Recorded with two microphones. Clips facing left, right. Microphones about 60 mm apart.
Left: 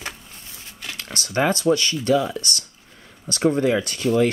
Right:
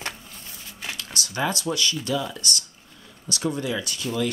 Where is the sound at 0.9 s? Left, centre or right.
Left.